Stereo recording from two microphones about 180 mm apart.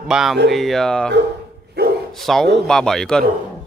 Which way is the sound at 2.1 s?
Centre (ahead or behind).